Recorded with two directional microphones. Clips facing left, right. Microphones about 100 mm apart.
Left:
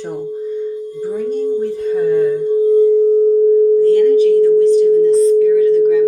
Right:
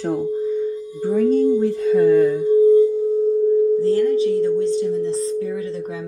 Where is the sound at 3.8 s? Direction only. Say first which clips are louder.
Left 7 dB; 30° right (ahead or behind).